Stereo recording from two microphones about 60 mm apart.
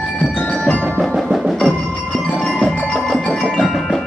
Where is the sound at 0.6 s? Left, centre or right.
Left.